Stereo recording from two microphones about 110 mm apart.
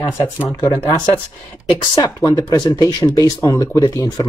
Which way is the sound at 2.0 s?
35° left (ahead or behind).